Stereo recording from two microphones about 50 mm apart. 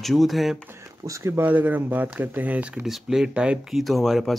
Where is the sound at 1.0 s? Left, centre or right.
Right.